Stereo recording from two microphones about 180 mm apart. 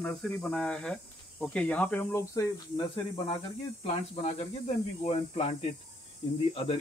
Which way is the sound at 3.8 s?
35° left (ahead or behind).